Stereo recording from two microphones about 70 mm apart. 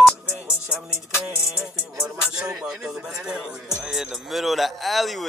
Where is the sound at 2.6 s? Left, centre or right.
Centre.